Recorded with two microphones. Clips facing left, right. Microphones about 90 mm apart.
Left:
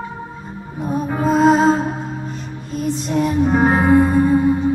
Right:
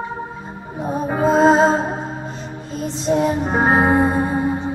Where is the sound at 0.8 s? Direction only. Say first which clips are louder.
Right 1 dB; 25° right (ahead or behind).